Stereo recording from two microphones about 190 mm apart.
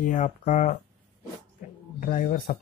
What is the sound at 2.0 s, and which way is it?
Speech, 45° left (ahead or behind).